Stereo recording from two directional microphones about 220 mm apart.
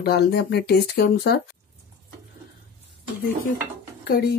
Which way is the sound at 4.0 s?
45° left (ahead or behind).